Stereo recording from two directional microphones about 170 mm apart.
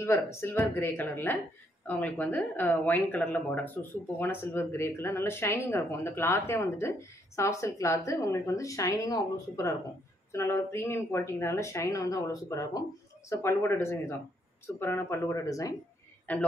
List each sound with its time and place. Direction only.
0.0 s speech: 15° left (ahead or behind)
16.3 s speech: 10° left (ahead or behind)